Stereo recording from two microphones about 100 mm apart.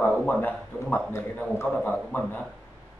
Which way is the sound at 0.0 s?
15° left (ahead or behind).